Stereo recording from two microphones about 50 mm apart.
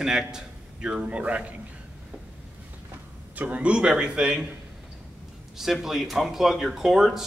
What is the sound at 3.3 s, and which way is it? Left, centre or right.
A man's voice, right.